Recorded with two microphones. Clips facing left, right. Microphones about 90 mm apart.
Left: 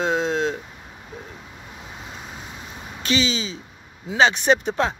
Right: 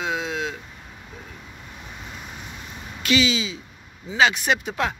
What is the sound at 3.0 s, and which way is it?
Speech, 30° left (ahead or behind).